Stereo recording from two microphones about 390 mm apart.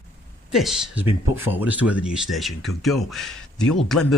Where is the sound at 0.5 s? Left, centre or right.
Centre.